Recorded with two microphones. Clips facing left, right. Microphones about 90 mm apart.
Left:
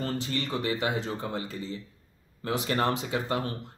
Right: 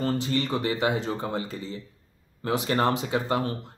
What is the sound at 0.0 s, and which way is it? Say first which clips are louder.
Speech: right 5 dB; 30° right (ahead or behind).